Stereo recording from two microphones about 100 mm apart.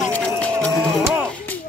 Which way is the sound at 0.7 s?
30° right (ahead or behind).